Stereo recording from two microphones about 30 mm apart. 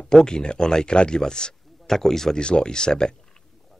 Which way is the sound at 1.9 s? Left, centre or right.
Centre.